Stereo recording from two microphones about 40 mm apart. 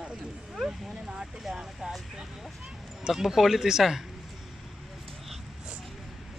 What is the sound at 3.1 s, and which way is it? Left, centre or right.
Speech, centre.